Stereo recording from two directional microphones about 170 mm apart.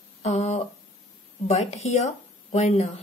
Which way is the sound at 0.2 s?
40° left (ahead or behind).